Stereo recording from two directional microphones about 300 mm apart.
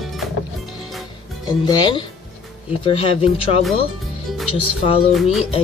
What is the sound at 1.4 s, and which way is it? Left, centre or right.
Speech, centre.